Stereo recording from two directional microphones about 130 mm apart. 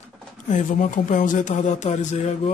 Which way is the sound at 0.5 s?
80° left.